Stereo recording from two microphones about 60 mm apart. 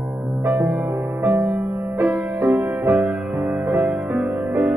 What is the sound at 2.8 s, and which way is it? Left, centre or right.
Music, right.